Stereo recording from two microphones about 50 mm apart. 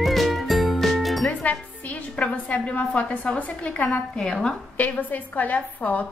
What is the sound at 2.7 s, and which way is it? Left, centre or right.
A woman's voice, left.